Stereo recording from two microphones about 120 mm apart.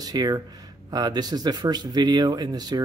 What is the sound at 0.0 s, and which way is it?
A man's voice, 35° right (ahead or behind).